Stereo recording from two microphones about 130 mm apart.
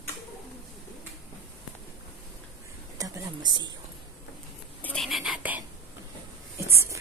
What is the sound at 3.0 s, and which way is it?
Speech, 35° right (ahead or behind).